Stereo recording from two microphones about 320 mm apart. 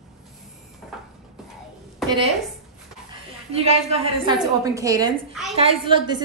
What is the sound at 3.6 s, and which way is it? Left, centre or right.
A woman's voice, centre.